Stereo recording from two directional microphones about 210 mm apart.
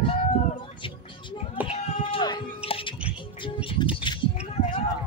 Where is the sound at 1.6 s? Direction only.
25° left (ahead or behind).